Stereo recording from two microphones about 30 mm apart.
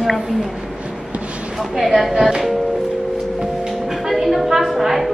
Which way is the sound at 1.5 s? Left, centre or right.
Centre.